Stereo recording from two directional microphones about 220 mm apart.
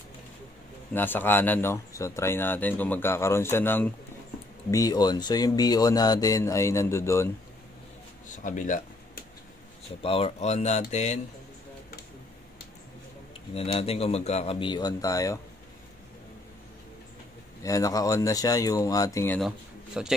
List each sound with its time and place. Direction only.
0.9 s speech: 10° left (ahead or behind)
8.3 s speech: 35° left (ahead or behind)
10.0 s speech: 25° left (ahead or behind)
13.6 s speech: 25° left (ahead or behind)
17.6 s speech: 15° left (ahead or behind); by 20.2 s 5° right (ahead or behind)